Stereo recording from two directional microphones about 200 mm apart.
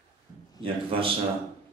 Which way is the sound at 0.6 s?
25° right (ahead or behind).